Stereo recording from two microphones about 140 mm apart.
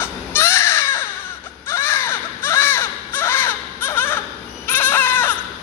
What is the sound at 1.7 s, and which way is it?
Caw, 15° left (ahead or behind).